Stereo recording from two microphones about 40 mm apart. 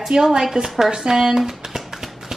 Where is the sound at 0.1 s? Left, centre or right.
Centre.